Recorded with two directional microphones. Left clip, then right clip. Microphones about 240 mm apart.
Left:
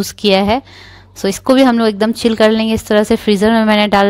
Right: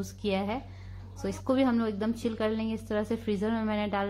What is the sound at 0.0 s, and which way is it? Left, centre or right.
Speech, left.